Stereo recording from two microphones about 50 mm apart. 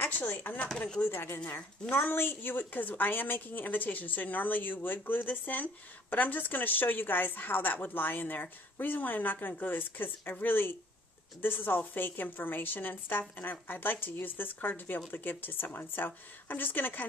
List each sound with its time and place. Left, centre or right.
0.0 s a woman's voice: left